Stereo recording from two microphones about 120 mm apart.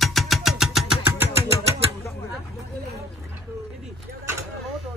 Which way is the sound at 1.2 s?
25° right (ahead or behind).